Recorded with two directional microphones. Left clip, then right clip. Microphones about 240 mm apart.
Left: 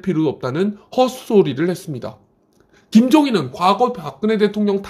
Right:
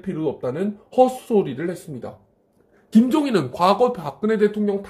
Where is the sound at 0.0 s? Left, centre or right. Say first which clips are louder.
Left 5 dB; left.